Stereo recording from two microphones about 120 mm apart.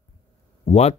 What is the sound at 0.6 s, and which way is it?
Speech, 60° left (ahead or behind).